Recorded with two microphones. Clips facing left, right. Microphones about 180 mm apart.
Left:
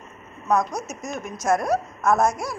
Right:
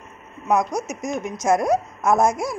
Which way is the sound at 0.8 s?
90° right.